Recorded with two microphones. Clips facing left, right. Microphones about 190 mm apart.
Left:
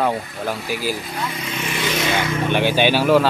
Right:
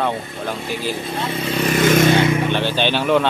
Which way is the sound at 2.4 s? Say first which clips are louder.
Left 2 dB; 10° left (ahead or behind).